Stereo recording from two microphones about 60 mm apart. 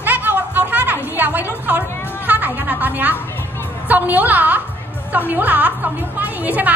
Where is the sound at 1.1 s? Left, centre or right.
Right.